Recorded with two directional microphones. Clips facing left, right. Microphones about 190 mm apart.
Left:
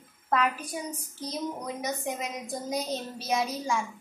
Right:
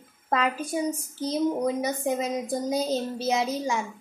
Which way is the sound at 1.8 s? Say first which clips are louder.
Right 6 dB; 30° right (ahead or behind).